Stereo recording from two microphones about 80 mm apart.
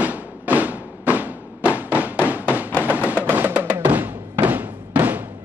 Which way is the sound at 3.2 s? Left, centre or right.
Right.